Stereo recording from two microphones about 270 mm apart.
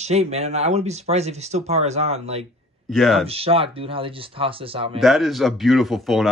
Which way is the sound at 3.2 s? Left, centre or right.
Right.